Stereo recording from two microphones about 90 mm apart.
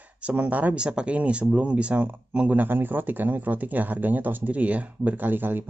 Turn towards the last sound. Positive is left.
turn(degrees=-20)  # may be behind; listen again after turning